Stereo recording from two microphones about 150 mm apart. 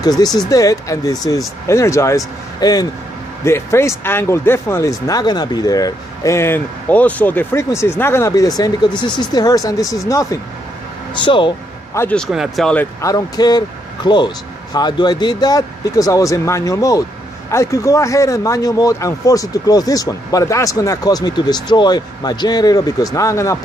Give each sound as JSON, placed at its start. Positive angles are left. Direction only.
{"t": 0.5, "sound": "speech", "side_deg": 20}
{"t": 11.1, "sound": "speech", "side_deg": 30}
{"t": 11.9, "sound": "speech", "side_deg": 15}
{"t": 12.2, "sound": "speech", "side_deg": 0}
{"t": 13.0, "sound": "speech", "side_deg": 25}